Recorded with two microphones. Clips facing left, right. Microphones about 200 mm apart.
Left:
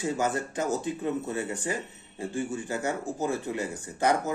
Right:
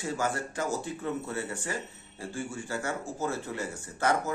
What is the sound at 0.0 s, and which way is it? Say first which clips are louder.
A man's voice: left 3 dB; 20° left (ahead or behind).